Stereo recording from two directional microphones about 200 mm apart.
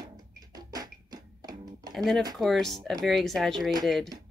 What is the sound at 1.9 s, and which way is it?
Speech, centre (ahead or behind).